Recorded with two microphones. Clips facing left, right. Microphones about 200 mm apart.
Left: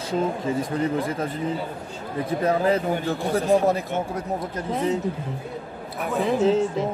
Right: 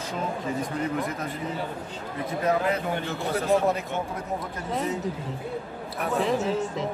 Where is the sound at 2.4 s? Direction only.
30° left (ahead or behind).